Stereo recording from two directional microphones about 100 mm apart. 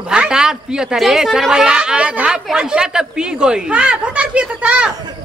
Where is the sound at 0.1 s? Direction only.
5° right (ahead or behind).